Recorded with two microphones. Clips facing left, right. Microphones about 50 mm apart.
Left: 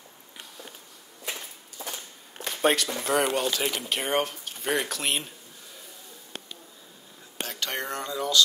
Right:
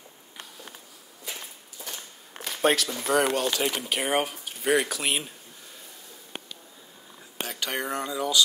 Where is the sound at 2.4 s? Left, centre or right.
Centre.